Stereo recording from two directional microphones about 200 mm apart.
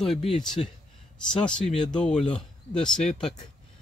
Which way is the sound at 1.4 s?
5° left (ahead or behind).